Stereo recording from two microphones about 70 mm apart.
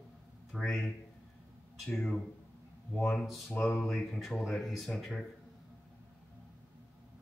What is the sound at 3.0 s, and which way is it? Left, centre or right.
Speech, centre.